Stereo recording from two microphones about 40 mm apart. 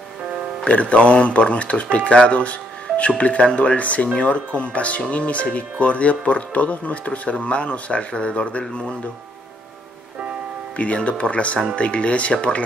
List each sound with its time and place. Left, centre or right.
0.7 s speech: left
11.1 s speech: left